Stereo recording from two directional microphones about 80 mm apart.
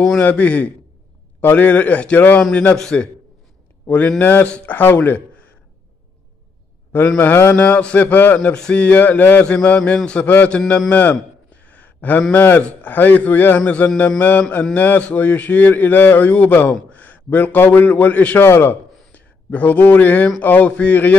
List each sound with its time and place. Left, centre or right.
0.2 s a man's voice: centre
2.7 s a man's voice: centre
4.2 s speech: left
7.2 s speech: left
7.5 s speech: centre
8.4 s a man's voice: centre
11.6 s a sound: centre
12.8 s a man's voice: left